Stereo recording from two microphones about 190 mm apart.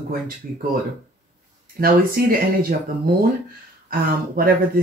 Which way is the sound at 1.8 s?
50° right (ahead or behind).